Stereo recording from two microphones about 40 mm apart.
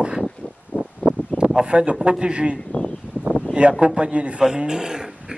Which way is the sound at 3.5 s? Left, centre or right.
Right.